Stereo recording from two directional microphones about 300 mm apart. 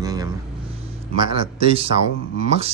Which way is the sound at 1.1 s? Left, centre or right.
Centre.